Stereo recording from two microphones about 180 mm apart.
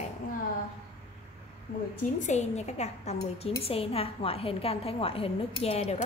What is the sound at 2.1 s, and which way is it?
Speech, 40° left (ahead or behind).